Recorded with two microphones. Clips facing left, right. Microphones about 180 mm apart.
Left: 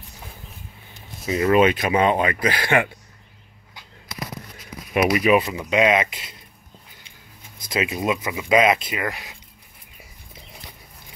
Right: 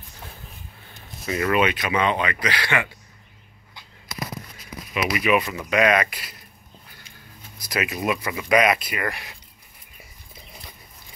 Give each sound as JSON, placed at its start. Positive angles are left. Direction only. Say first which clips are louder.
{"t": 1.2, "sound": "speech", "louder": "left 4 dB", "side_deg": 25}
{"t": 1.6, "sound": "speech", "louder": "left 4 dB", "side_deg": 40}
{"t": 4.9, "sound": "speech", "louder": "left 4 dB", "side_deg": 40}
{"t": 5.4, "sound": "speech", "louder": "left 1 dB", "side_deg": 20}
{"t": 7.6, "sound": "speech", "louder": "left 2 dB", "side_deg": 25}